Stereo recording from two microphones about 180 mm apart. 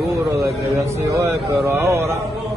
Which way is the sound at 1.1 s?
15° right (ahead or behind).